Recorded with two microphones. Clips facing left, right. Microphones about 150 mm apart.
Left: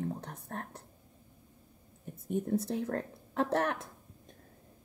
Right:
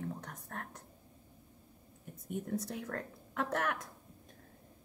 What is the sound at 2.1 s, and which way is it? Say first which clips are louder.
Speech: left 6 dB; 30° left (ahead or behind).